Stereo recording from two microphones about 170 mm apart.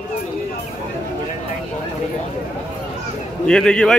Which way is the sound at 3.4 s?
5° left (ahead or behind).